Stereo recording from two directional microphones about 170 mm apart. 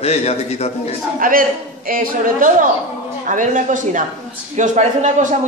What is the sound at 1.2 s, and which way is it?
A man's voice, 55° right (ahead or behind).